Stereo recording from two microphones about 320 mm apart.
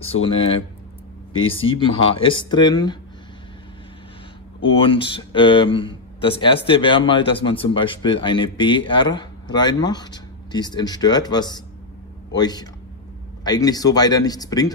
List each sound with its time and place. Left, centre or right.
0.0 s speech: centre
4.6 s speech: centre